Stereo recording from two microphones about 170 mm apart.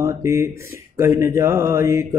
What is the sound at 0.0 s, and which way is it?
Speech, 15° right (ahead or behind).